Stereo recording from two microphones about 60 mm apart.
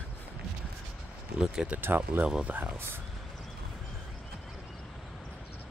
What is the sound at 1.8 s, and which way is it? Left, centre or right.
Speech, right.